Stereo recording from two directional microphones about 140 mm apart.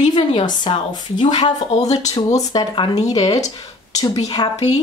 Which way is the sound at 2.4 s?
30° left (ahead or behind).